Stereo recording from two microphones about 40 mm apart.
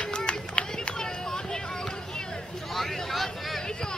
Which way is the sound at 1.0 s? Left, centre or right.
Centre.